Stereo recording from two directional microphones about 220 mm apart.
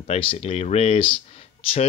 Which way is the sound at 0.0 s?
25° left (ahead or behind).